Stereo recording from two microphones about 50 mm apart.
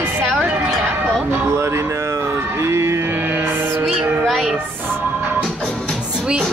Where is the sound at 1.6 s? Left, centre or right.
Right.